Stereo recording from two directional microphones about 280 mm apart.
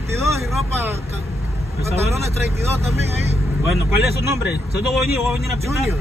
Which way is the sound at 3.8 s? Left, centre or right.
Centre.